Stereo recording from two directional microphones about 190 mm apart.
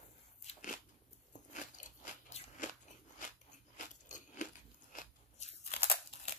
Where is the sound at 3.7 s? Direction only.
40° left (ahead or behind).